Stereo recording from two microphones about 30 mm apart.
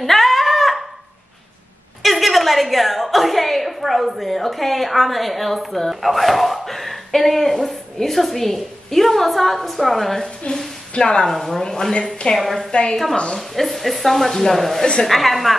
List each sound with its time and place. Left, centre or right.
0.0 s a sound: centre
2.0 s a sound: centre
4.3 s a woman's voice: centre
10.4 s a woman's voice: left
11.2 s speech: centre
12.4 s a woman's voice: centre